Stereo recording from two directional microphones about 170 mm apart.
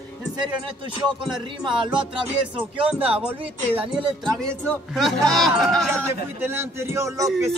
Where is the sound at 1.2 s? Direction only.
Centre (ahead or behind).